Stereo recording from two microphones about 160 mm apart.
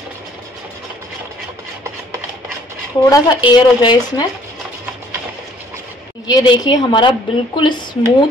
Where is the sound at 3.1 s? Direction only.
25° left (ahead or behind).